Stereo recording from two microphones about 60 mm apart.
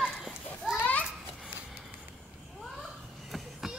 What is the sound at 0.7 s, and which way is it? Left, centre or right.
Children playing, left.